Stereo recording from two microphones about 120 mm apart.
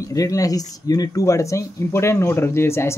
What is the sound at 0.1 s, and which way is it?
Speech, 30° left (ahead or behind).